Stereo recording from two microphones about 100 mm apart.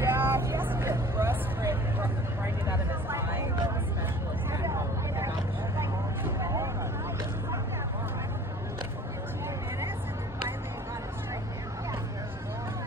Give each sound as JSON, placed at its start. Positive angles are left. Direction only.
{"t": 0.0, "sound": "vehicle", "side_deg": -25}